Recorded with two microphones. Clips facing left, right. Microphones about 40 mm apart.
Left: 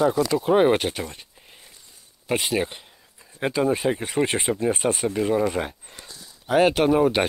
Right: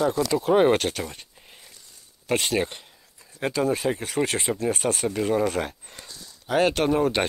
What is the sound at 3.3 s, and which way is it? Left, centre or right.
Speech, centre.